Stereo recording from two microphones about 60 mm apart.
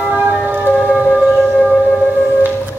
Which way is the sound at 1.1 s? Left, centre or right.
Centre.